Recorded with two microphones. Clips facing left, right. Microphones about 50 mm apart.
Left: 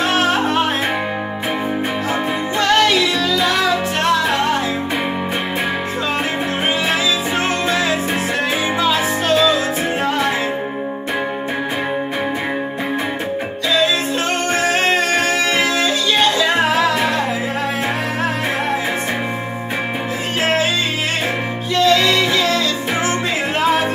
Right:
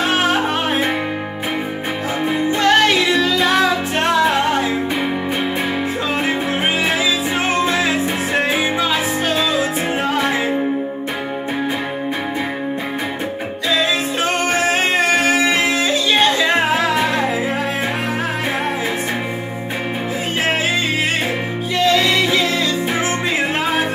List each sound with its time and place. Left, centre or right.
0.0 s music: centre
2.6 s music: right
14.5 s music: centre
21.7 s music: centre